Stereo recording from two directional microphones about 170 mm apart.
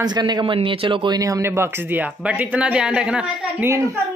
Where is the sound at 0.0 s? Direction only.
25° right (ahead or behind).